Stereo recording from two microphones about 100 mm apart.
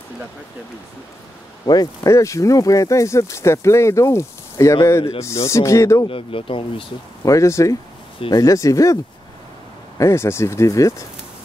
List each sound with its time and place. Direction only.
1.7 s speech: 35° left (ahead or behind)
6.0 s speech: 65° left (ahead or behind)
7.2 s speech: 30° left (ahead or behind)
9.9 s speech: 25° left (ahead or behind)